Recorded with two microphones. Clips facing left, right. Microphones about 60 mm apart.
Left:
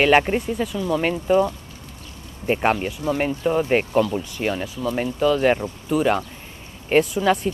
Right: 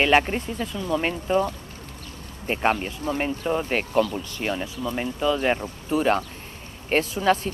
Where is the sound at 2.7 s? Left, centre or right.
Left.